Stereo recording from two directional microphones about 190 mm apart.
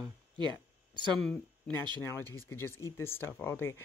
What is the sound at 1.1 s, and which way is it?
Speech, centre (ahead or behind).